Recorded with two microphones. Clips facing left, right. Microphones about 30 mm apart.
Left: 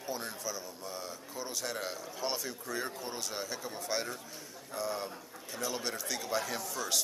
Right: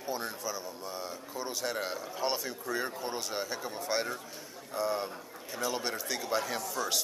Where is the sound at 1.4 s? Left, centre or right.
Centre.